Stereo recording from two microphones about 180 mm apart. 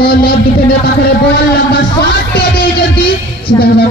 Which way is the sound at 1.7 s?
65° left (ahead or behind).